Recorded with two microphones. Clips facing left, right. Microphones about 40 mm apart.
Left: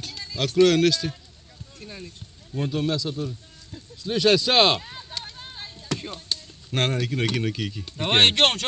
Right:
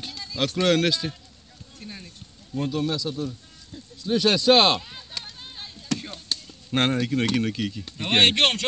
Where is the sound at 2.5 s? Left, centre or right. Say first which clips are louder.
Right 1 dB; left.